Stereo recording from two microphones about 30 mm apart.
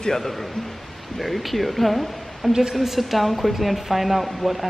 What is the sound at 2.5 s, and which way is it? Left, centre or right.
Speech, centre.